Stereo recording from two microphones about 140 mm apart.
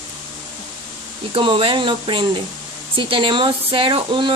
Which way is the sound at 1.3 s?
40° right (ahead or behind).